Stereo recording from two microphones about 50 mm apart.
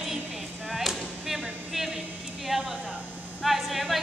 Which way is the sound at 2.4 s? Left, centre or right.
Centre.